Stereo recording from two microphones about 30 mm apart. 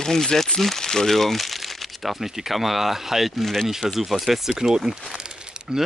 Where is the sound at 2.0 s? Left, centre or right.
Centre.